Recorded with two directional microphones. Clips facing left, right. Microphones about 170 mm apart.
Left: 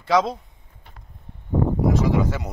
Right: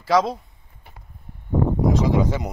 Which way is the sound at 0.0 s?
Centre (ahead or behind).